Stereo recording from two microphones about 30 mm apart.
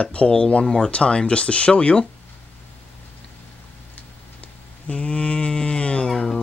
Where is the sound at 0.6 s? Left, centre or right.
Left.